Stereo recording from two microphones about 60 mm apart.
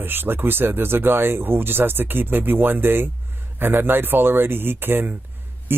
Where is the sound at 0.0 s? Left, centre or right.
Right.